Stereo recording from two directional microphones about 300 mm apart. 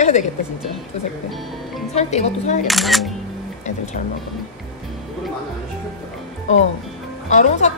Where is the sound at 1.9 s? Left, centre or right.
Left.